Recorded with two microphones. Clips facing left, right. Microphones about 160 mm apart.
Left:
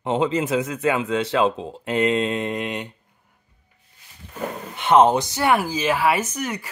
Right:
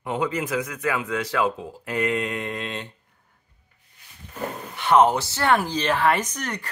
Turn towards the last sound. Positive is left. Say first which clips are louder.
# left 3 dB
turn(degrees=10)  # may be behind; listen again after turning